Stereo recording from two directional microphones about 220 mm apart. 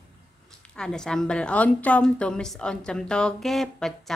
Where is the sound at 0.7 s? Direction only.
5° left (ahead or behind).